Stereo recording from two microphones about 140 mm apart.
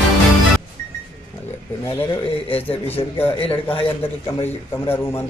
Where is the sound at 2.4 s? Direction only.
45° left (ahead or behind).